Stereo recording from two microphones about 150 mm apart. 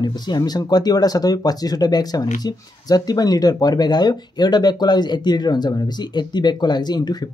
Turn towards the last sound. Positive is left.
turn(degrees=30)  # may be behind; listen again after turning